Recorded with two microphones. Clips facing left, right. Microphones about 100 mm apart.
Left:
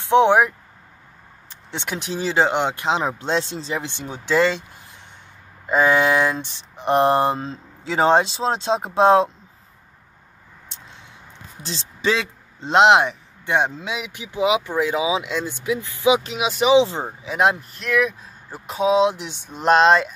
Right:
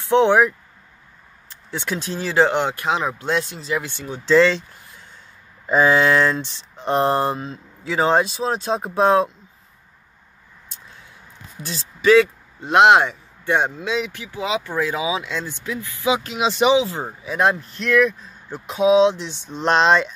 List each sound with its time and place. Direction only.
0.1 s speech: 15° left (ahead or behind)
1.7 s speech: 20° left (ahead or behind)
11.6 s speech: 25° left (ahead or behind)
16.4 s speech: centre (ahead or behind)
16.7 s speech: 25° left (ahead or behind)
17.6 s speech: 5° left (ahead or behind)